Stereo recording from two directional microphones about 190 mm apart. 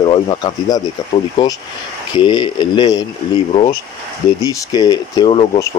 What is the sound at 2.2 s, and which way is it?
Speech, 25° left (ahead or behind).